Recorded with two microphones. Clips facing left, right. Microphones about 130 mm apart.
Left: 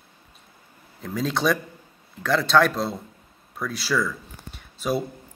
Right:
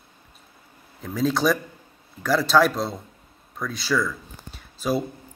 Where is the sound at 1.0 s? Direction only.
Centre (ahead or behind).